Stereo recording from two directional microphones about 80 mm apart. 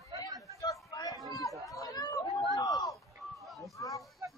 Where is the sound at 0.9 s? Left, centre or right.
Left.